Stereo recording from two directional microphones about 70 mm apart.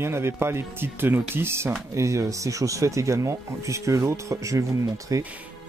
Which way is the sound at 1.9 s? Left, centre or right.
Right.